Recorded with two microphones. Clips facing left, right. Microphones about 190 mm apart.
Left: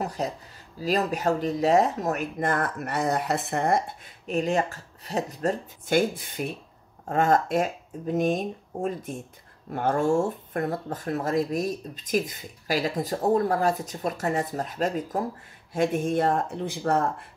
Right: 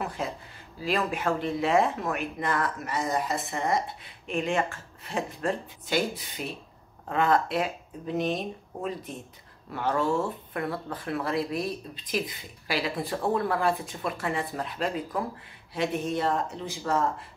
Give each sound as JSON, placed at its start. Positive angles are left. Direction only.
{"t": 0.0, "sound": "speech", "side_deg": 40}